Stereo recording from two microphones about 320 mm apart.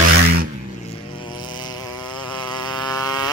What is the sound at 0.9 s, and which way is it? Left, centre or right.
Insect, centre.